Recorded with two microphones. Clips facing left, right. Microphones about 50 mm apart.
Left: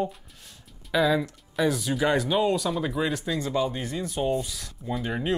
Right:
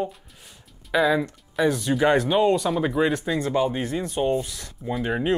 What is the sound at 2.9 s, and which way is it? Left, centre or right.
Speech, centre.